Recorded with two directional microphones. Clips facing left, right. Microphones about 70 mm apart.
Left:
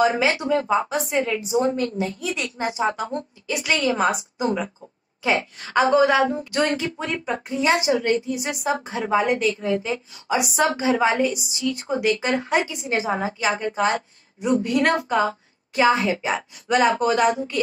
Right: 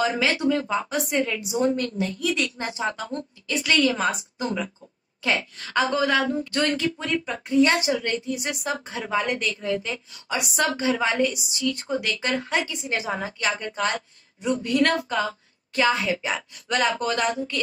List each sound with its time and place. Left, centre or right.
0.2 s speech: centre
0.8 s a woman's voice: centre
2.0 s a woman's voice: centre
7.6 s a woman's voice: centre
10.4 s a woman's voice: centre
12.7 s a woman's voice: centre
15.9 s a woman's voice: centre